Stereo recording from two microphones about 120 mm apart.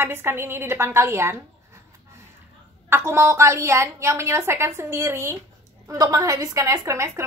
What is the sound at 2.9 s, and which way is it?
A woman's voice, 25° right (ahead or behind).